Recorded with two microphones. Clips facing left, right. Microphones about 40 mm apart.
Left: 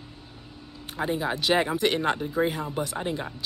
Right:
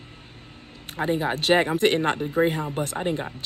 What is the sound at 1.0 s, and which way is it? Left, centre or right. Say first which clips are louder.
Speech: right 3 dB; right.